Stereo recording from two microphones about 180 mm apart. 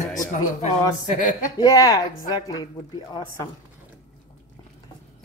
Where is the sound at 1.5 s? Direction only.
20° left (ahead or behind).